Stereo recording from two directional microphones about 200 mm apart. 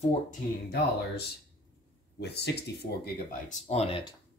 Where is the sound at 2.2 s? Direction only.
55° left (ahead or behind).